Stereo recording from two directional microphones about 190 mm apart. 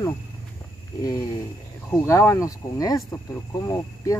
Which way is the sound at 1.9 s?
15° left (ahead or behind).